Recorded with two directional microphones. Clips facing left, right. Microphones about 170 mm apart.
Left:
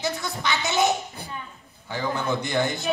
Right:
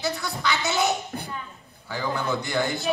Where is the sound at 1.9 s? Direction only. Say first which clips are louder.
Left 1 dB; 20° left (ahead or behind).